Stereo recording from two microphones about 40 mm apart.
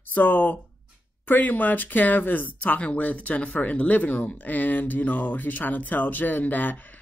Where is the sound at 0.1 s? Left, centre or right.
Left.